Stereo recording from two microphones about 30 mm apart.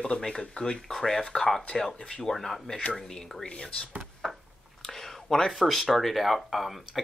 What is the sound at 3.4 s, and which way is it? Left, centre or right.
Speech, left.